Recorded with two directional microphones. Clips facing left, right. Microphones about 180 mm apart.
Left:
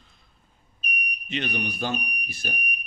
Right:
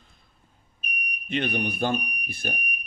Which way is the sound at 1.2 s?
55° right (ahead or behind).